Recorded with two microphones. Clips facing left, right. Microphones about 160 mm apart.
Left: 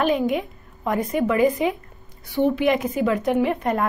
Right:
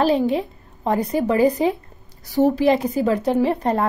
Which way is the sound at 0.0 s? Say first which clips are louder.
Right 3 dB; 35° right (ahead or behind).